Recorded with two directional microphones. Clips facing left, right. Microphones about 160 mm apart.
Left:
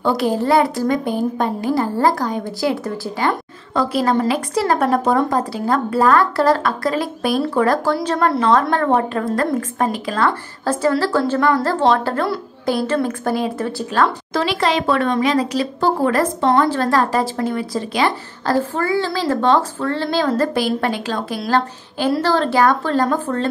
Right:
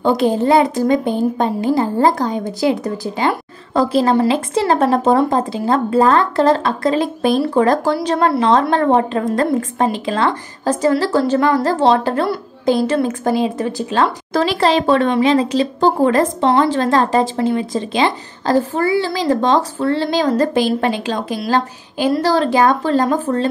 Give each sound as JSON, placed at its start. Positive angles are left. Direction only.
{"t": 0.0, "sound": "speech", "side_deg": -20}
{"t": 3.7, "sound": "speech", "side_deg": -30}
{"t": 14.3, "sound": "speech", "side_deg": -35}